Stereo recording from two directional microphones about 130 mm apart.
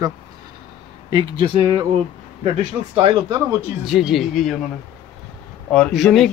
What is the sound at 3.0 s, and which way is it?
Speech, 30° right (ahead or behind).